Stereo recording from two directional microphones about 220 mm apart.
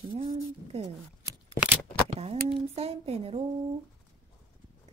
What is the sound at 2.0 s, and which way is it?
Speech, 30° right (ahead or behind).